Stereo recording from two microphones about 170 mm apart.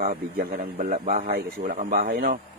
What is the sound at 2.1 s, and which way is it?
Speech, 65° right (ahead or behind).